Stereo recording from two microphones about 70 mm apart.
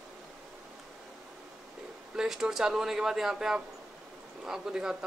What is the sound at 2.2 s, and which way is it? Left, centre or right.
Speech, centre.